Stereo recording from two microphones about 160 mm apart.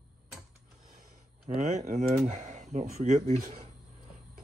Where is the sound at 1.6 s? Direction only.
50° right (ahead or behind).